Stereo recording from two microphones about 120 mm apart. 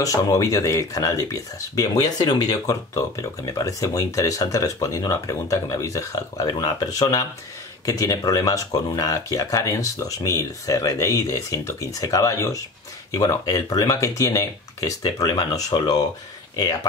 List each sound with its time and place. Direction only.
0.0 s speech: 30° left (ahead or behind)